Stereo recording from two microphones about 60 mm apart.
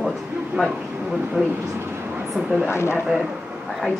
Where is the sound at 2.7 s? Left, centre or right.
Left.